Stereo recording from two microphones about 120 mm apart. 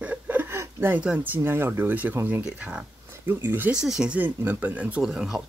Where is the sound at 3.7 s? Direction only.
5° right (ahead or behind).